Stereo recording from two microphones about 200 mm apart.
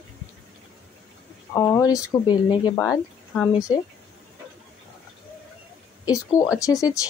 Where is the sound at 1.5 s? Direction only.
15° left (ahead or behind).